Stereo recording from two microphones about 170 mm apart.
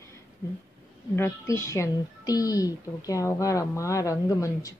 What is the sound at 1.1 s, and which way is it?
A woman's voice, 15° left (ahead or behind).